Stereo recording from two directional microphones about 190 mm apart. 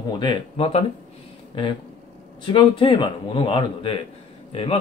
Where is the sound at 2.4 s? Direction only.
25° left (ahead or behind).